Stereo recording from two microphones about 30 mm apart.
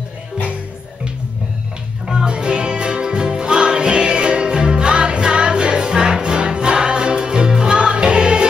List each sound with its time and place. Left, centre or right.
2.0 s music: right